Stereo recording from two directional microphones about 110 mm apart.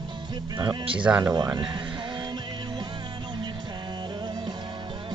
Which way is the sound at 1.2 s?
35° right (ahead or behind).